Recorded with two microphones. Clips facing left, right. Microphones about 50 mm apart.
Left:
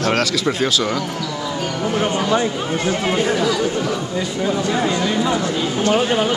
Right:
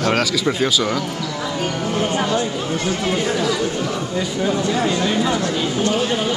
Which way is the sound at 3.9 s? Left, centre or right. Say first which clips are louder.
Even; centre.